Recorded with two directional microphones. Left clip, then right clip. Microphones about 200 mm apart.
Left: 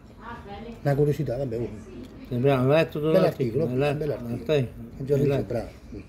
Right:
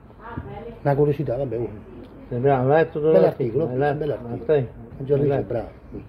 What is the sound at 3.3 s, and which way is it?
Speech, 20° left (ahead or behind).